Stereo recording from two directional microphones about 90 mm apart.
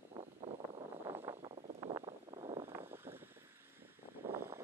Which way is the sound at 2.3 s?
40° right (ahead or behind).